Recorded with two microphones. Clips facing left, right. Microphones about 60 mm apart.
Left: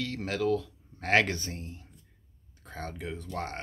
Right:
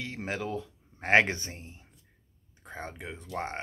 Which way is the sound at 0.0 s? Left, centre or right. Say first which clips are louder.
Left 4 dB; right.